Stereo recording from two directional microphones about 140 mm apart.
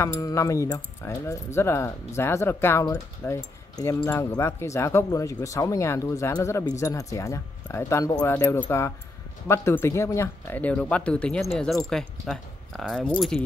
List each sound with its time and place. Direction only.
0.0 s speech: 20° left (ahead or behind); by 13.4 s 5° left (ahead or behind)